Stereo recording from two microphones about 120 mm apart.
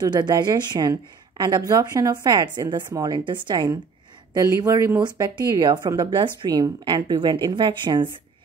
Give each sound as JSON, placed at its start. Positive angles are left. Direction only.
{"t": 0.0, "sound": "speech", "side_deg": -35}